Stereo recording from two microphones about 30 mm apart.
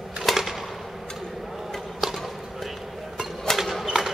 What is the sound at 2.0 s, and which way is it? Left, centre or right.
Basketball bounce, centre.